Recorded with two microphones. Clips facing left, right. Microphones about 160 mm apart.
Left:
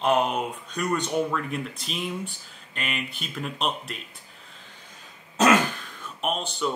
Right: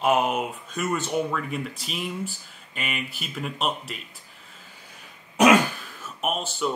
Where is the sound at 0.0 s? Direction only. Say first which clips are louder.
Right 1 dB; 5° right (ahead or behind).